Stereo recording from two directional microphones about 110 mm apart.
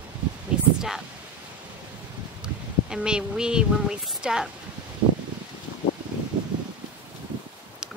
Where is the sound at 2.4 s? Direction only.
5° right (ahead or behind).